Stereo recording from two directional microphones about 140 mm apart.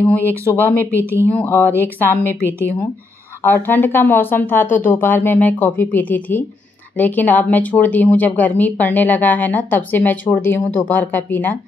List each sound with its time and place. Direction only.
0.0 s a woman's voice: 10° left (ahead or behind)